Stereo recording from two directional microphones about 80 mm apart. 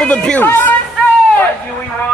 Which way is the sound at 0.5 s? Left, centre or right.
Left.